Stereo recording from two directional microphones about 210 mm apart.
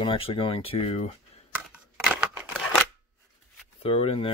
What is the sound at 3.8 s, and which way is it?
Speech, 25° left (ahead or behind).